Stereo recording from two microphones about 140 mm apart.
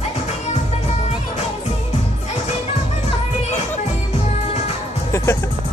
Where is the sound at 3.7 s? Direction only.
55° left (ahead or behind).